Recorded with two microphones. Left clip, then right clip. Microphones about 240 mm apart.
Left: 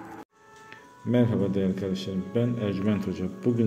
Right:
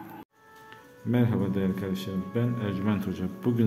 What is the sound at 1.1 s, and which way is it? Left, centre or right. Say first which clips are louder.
A man's voice: left 3 dB; centre.